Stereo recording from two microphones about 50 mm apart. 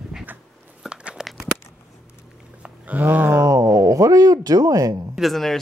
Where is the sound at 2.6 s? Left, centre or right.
Right.